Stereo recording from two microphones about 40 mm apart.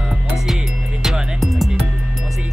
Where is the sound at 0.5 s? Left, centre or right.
Centre.